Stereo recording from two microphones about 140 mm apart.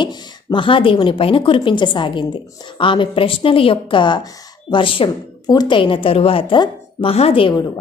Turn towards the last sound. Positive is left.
turn(degrees=40)  # may be behind; listen again after turning